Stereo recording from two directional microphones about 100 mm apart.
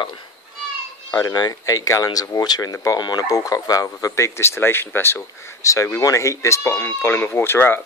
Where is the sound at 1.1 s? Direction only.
40° left (ahead or behind).